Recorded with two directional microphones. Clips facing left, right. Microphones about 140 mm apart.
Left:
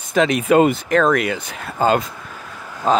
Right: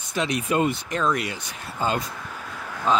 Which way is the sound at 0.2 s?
90° left.